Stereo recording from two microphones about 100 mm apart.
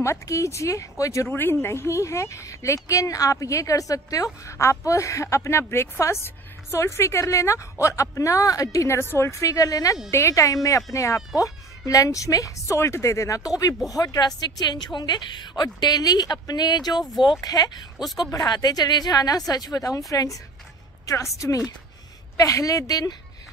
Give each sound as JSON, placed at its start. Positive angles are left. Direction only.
{"t": 0.0, "sound": "a woman's voice", "side_deg": 30}